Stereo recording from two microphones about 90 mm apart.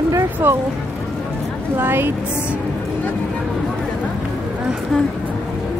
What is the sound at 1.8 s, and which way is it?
Speech, 25° right (ahead or behind).